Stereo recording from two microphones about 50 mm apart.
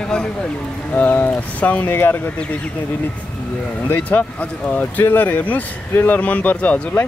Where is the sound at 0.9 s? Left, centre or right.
Left.